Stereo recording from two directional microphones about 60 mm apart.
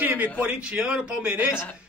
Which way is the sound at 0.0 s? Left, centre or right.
Right.